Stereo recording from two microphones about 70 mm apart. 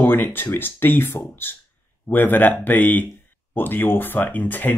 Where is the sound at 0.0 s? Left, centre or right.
Left.